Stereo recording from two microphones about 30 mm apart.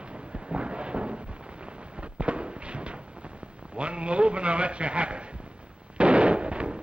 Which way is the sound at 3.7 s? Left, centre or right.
Right.